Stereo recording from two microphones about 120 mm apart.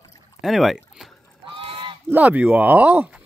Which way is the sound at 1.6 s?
45° right (ahead or behind).